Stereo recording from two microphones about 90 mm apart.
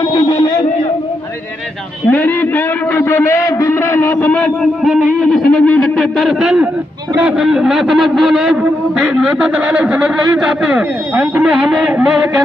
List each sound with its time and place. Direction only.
0.1 s a sound: 45° left (ahead or behind)
2.0 s a man's voice: 25° left (ahead or behind)
4.2 s a man's voice: 15° left (ahead or behind)
4.8 s a man's voice: 5° right (ahead or behind)